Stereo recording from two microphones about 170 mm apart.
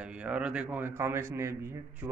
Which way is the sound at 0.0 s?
5° right (ahead or behind).